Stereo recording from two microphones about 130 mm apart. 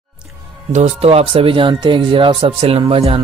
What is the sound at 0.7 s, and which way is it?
Speech, 50° right (ahead or behind).